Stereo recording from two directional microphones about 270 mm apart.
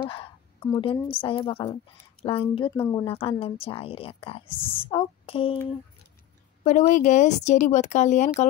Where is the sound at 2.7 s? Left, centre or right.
Centre.